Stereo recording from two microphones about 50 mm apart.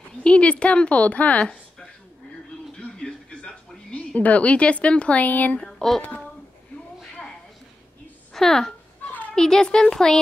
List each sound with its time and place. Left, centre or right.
0.2 s a woman's voice: left
2.7 s music: centre
4.1 s a woman's voice: left
5.7 s speech: centre
8.3 s a woman's voice: centre